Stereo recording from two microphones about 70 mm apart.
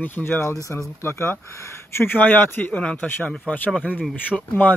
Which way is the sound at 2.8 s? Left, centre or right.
Centre.